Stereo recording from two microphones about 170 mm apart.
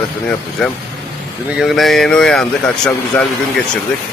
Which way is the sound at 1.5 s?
Centre (ahead or behind).